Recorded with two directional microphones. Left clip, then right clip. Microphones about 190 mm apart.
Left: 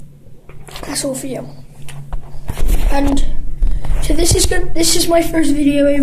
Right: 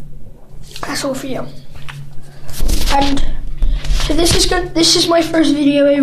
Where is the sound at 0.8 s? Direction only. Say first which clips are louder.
Right 2 dB; 10° left (ahead or behind).